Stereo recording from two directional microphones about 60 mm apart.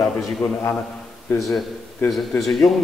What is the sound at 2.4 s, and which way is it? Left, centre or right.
Speech, centre.